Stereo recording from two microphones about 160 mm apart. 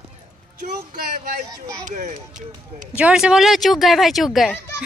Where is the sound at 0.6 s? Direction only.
55° right (ahead or behind).